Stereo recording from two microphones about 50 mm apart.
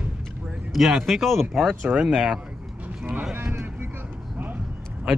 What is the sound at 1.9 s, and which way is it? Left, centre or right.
Speech, right.